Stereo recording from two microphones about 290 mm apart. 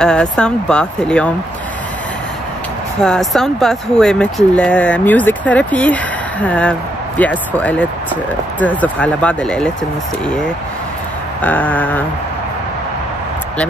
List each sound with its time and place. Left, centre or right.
0.0 s speech: centre
3.0 s speech: centre
11.4 s speech: centre